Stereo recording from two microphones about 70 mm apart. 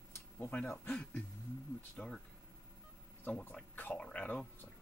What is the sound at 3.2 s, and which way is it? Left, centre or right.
Speech, left.